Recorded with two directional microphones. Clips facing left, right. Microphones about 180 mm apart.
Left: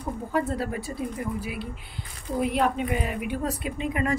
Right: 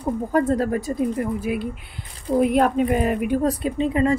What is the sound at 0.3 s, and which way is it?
A woman's voice, 45° right (ahead or behind).